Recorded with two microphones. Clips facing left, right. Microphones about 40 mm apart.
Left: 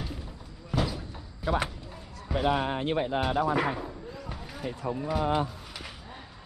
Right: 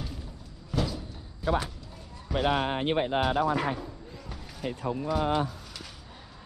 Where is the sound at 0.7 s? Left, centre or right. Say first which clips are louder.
Left 1 dB; centre.